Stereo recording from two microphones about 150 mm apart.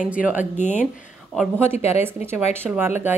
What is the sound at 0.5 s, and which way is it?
Speech, 55° left (ahead or behind).